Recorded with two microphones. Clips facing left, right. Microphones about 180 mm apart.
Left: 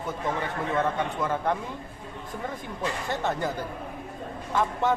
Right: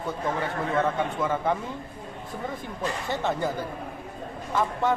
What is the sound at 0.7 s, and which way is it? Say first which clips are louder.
Speech: right 1 dB; centre (ahead or behind).